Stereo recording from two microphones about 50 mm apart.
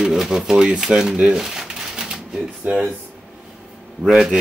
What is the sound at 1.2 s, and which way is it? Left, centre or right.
Shuffling cards, centre.